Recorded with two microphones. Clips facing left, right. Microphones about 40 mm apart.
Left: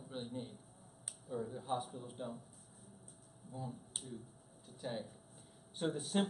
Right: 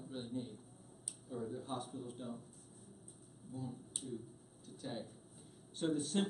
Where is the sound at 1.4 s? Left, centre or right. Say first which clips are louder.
Left 3 dB; centre.